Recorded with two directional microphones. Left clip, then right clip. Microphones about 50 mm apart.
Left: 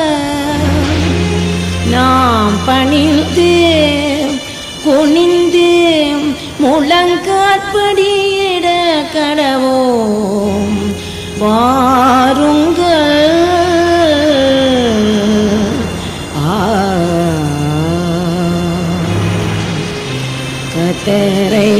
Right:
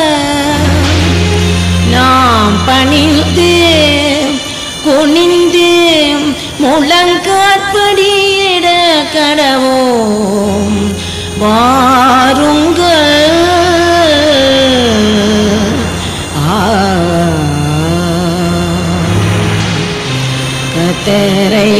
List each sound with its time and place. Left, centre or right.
0.0 s music: left
5.2 s a sound: left
11.4 s carnatic music: left
20.8 s music: left